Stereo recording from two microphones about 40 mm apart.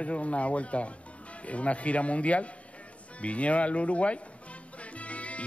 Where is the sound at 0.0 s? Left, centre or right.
Left.